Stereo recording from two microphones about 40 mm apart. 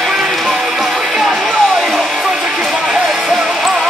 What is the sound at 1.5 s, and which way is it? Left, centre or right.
Music, centre.